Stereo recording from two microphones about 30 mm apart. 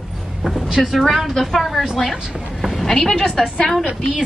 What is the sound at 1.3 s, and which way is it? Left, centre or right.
Speech, centre.